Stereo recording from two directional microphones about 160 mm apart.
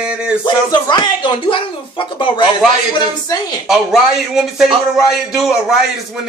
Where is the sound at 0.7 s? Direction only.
30° left (ahead or behind).